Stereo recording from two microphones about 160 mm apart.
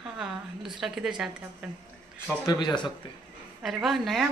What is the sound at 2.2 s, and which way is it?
Speech, 20° left (ahead or behind).